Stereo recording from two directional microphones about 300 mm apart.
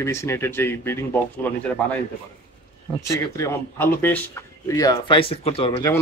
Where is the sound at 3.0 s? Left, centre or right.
Centre.